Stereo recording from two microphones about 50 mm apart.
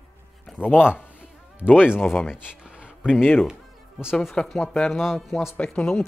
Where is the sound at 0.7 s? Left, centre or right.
Centre.